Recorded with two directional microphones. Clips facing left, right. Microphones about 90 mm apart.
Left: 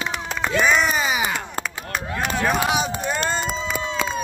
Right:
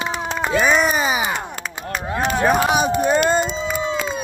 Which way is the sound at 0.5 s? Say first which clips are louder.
Right 2 dB; 10° right (ahead or behind).